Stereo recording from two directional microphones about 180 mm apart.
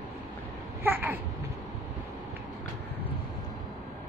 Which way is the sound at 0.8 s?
10° right (ahead or behind).